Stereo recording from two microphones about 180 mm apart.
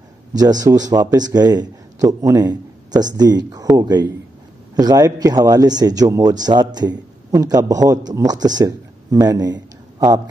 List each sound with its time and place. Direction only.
0.3 s speech: 20° right (ahead or behind)